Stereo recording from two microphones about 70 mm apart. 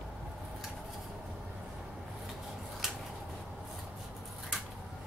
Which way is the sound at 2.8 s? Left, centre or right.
Centre.